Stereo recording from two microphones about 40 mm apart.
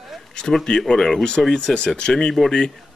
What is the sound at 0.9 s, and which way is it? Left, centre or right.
Speech, centre.